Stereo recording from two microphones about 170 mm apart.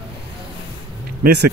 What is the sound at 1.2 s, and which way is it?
Speech, 75° right (ahead or behind).